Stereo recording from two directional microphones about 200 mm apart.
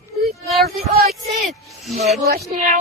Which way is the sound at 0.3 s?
Centre (ahead or behind).